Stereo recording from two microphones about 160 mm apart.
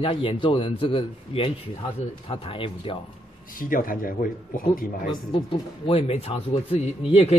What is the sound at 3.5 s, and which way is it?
A man's voice, 60° left (ahead or behind).